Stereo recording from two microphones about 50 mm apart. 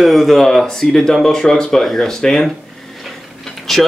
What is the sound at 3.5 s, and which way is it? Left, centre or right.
Vehicle, centre.